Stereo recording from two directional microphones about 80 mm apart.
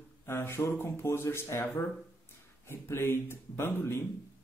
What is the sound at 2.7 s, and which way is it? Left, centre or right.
Speech, left.